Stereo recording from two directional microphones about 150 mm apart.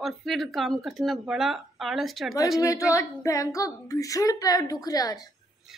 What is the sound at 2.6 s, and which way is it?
Speech, 20° left (ahead or behind).